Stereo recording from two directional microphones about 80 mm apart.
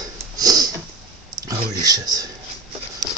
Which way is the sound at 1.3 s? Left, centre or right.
Right.